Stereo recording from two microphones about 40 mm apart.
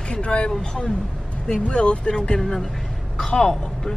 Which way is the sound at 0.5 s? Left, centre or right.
Centre.